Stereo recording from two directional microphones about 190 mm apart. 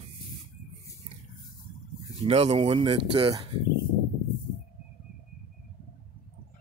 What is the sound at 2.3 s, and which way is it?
Speech, 30° right (ahead or behind).